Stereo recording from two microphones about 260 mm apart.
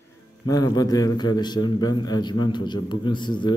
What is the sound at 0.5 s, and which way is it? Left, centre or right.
A man's voice, centre.